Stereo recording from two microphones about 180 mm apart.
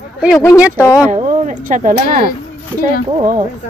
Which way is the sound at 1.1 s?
45° right (ahead or behind).